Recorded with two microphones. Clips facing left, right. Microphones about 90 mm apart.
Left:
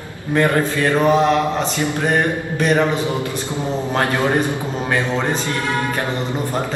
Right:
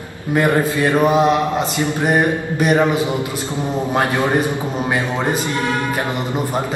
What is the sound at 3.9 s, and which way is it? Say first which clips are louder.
Mantra: right 1 dB; 15° right (ahead or behind).